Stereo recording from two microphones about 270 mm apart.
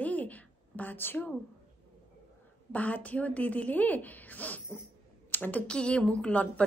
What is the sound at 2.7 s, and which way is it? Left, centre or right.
A woman's voice, centre.